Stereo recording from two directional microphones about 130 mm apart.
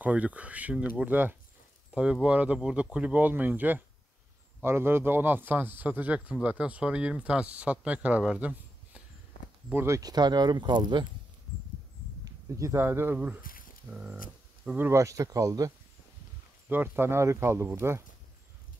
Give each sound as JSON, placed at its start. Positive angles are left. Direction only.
{"t": 0.0, "sound": "speech", "side_deg": -10}
{"t": 12.3, "sound": "speech", "side_deg": -25}
{"t": 13.4, "sound": "a sound", "side_deg": 90}
{"t": 13.8, "sound": "speech", "side_deg": -5}
{"t": 14.8, "sound": "speech", "side_deg": -20}
{"t": 16.6, "sound": "speech", "side_deg": -15}